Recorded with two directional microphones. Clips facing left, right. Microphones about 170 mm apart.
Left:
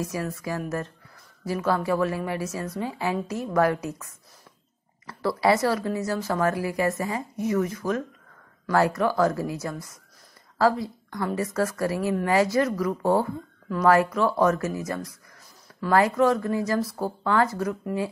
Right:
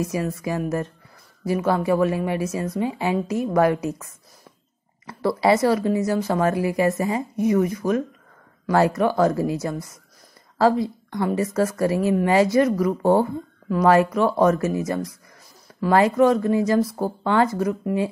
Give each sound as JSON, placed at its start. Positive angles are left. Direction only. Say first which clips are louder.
{"t": 0.1, "sound": "a woman's voice", "louder": "right 5 dB", "side_deg": -20}